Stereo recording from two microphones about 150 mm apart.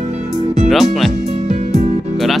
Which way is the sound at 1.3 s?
50° right (ahead or behind).